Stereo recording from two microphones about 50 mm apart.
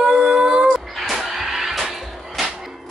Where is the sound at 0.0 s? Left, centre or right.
Centre.